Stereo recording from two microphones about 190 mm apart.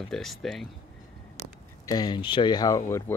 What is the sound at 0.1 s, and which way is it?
Speech, centre (ahead or behind).